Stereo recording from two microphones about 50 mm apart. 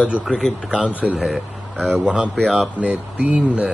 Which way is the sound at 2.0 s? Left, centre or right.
Right.